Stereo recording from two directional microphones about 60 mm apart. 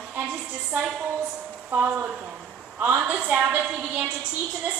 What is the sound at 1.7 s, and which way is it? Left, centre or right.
A woman's voice, right.